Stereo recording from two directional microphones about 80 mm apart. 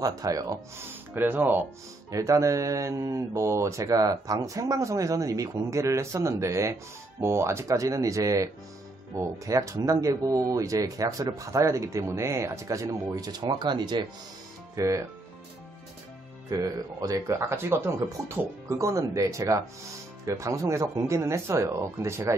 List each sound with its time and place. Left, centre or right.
0.0 s speech: right
0.7 s speech: right
2.0 s speech: right
3.8 s speech: right
13.4 s speech: right
14.8 s speech: right
16.4 s speech: right
17.3 s speech: right